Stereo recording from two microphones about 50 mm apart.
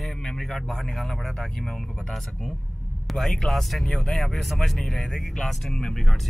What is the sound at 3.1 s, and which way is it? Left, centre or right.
Speech, centre.